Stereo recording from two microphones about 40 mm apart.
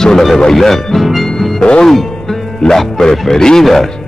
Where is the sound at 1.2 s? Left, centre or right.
Centre.